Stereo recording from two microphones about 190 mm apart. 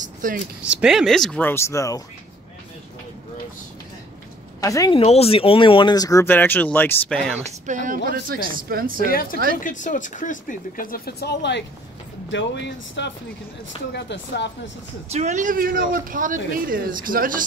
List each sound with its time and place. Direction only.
0.0 s a sound: 45° right (ahead or behind)
0.7 s speech: 5° right (ahead or behind); by 2.0 s 15° left (ahead or behind)
4.6 s speech: 20° left (ahead or behind)
4.9 s speech: 30° left (ahead or behind); by 7.3 s 5° left (ahead or behind)
7.3 s speech: 40° right (ahead or behind)
9.0 s speech: 50° left (ahead or behind); by 14.5 s 65° left (ahead or behind)
15.1 s speech: 40° right (ahead or behind)